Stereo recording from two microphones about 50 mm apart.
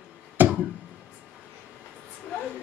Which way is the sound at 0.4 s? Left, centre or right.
Right.